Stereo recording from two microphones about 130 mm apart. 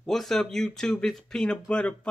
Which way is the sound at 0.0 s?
5° left (ahead or behind).